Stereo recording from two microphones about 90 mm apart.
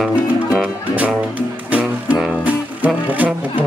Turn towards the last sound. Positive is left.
turn(degrees=-20)  # may be behind; listen again after turning